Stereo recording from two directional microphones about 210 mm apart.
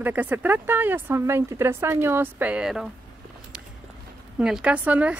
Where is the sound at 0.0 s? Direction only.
10° right (ahead or behind).